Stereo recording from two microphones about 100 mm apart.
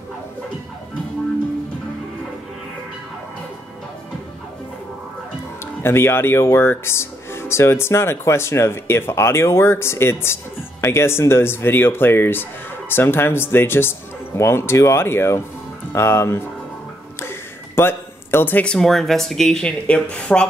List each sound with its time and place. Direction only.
5.8 s speech: 25° left (ahead or behind)